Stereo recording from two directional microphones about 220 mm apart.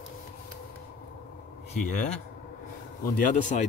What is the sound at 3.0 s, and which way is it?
Speech, 35° left (ahead or behind).